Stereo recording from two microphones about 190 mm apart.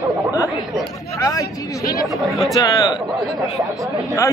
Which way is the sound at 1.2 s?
15° left (ahead or behind).